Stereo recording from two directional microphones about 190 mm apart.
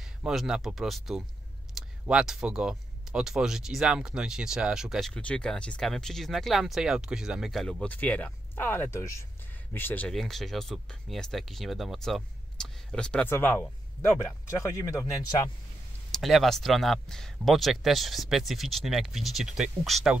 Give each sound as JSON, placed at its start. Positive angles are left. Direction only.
{"t": 0.0, "sound": "speech", "side_deg": 0}
{"t": 16.1, "sound": "speech", "side_deg": 0}